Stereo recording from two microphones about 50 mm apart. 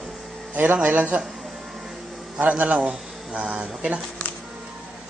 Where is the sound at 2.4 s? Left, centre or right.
Right.